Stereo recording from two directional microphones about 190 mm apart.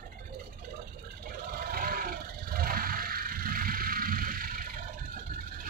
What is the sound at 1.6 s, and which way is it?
Vehicle, 50° right (ahead or behind).